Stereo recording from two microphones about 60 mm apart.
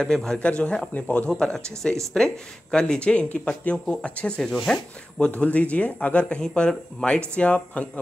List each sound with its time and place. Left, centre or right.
0.0 s speech: centre
1.3 s speech: centre
5.2 s speech: left